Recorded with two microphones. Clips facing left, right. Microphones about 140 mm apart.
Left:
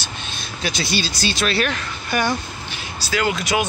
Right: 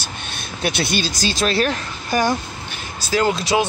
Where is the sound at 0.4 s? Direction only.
55° right (ahead or behind).